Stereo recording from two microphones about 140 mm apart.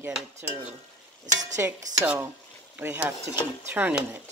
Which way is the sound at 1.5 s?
15° right (ahead or behind).